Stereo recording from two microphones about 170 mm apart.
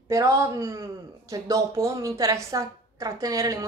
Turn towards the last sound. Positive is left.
turn(degrees=-20)  # may be behind; listen again after turning